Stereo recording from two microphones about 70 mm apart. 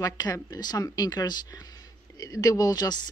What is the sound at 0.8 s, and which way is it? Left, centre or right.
Speech, left.